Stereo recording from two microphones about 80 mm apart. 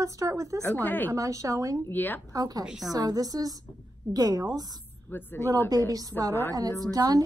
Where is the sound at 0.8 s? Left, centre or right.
Left.